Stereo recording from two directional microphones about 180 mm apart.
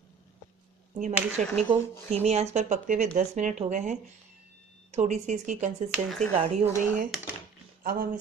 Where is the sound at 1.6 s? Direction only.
35° right (ahead or behind).